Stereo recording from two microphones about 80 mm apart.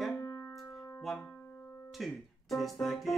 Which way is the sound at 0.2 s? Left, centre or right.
Left.